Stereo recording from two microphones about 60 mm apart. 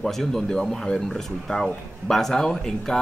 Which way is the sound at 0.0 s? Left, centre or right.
Centre.